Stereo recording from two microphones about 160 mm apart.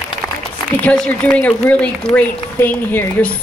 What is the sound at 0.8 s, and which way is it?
A woman's voice, 5° left (ahead or behind).